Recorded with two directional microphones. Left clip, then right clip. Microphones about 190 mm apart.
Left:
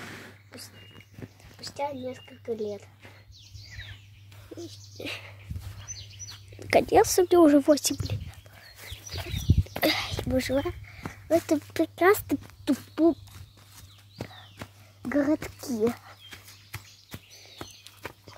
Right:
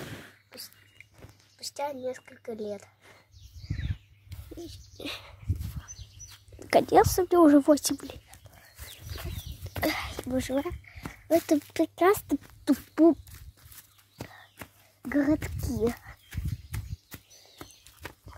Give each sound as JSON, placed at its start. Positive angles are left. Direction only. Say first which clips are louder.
{"t": 1.6, "sound": "speech", "louder": "left 1 dB", "side_deg": -45}
{"t": 4.6, "sound": "a sound", "louder": "left 2 dB", "side_deg": -15}
{"t": 5.8, "sound": "bird", "louder": "left 5 dB", "side_deg": 0}
{"t": 6.6, "sound": "speech", "louder": "even", "side_deg": -5}
{"t": 9.8, "sound": "speech", "louder": "left 4 dB", "side_deg": 0}
{"t": 12.9, "sound": "a sound", "louder": "right 2 dB", "side_deg": -25}
{"t": 13.3, "sound": "horse", "louder": "left 2 dB", "side_deg": -45}
{"t": 14.6, "sound": "wail", "louder": "left 2 dB", "side_deg": -45}
{"t": 15.0, "sound": "speech", "louder": "left 1 dB", "side_deg": -5}
{"t": 15.9, "sound": "a sound", "louder": "left 2 dB", "side_deg": 0}
{"t": 16.3, "sound": "horse", "louder": "left 1 dB", "side_deg": -35}